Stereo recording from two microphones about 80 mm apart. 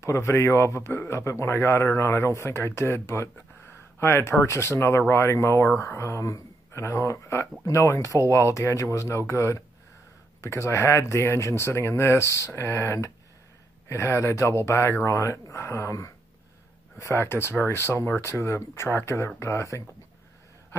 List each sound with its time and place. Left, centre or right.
0.0 s speech: left